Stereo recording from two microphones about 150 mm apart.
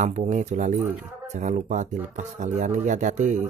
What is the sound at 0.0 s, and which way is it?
Speech, 55° right (ahead or behind).